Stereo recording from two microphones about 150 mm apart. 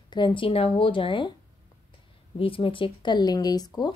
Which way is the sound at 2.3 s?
35° left (ahead or behind).